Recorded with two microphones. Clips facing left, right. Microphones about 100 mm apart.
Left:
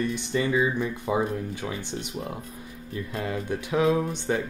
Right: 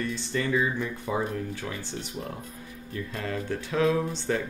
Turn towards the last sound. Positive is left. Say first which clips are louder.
# left 2 dB
turn(degrees=15)  # may be behind; listen again after turning